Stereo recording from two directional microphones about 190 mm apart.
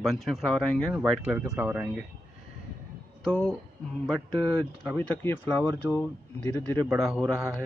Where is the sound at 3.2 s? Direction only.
5° left (ahead or behind).